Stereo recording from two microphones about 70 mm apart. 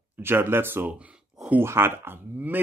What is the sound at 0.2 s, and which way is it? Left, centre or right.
Speech, right.